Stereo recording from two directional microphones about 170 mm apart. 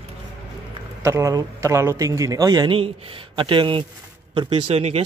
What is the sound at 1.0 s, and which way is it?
A man's voice, 20° right (ahead or behind).